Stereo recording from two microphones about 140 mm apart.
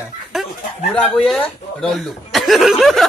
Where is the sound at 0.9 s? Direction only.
5° left (ahead or behind).